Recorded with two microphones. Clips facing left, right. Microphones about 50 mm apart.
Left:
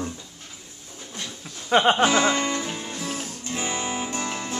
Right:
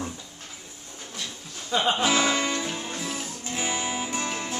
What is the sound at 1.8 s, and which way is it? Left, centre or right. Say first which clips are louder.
Speech: left 4 dB; left.